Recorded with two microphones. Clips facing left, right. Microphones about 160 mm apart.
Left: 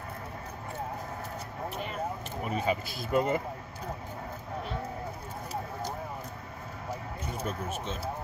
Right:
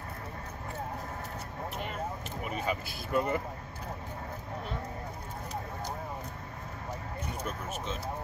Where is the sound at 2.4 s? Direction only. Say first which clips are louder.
Left 4 dB; 35° left (ahead or behind).